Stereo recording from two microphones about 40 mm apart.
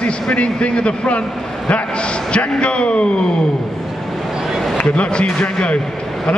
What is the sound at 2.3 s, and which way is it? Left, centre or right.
Speech, left.